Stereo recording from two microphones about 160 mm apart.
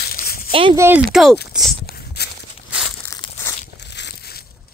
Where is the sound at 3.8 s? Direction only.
90° left.